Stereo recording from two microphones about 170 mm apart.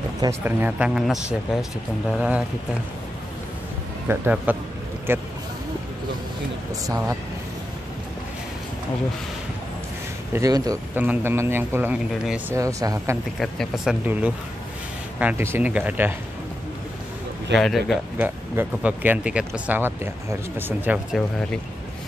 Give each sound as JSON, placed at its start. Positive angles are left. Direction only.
{"t": 0.2, "sound": "speech", "side_deg": -15}
{"t": 4.1, "sound": "speech", "side_deg": -10}
{"t": 10.3, "sound": "speech", "side_deg": -20}
{"t": 12.5, "sound": "speech", "side_deg": -20}
{"t": 13.4, "sound": "speech", "side_deg": 0}
{"t": 14.0, "sound": "speech", "side_deg": -10}
{"t": 17.6, "sound": "speech", "side_deg": 0}